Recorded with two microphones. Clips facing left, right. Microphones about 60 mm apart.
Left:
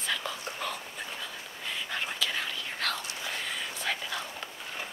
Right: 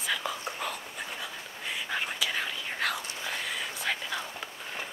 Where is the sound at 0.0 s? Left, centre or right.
Centre.